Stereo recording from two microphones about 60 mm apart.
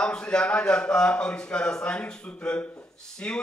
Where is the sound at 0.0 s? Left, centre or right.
Centre.